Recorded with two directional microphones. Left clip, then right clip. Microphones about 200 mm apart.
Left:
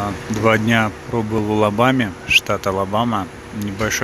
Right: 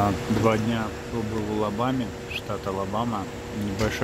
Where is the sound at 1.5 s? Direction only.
25° left (ahead or behind).